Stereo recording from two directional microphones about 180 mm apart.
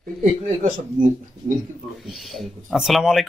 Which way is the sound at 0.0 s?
45° right (ahead or behind).